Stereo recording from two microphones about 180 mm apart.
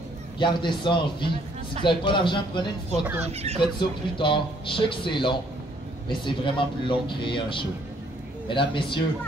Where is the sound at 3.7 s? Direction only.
25° left (ahead or behind).